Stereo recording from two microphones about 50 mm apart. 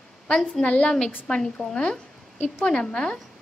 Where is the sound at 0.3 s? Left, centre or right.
Centre.